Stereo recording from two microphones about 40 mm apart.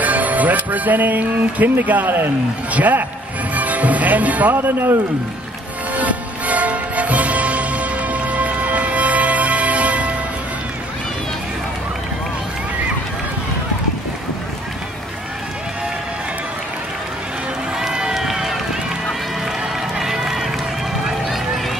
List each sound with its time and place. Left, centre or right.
0.0 s speech: right
2.7 s speech: right
4.6 s speech: right
5.9 s music: right
17.7 s run: centre
20.0 s run: centre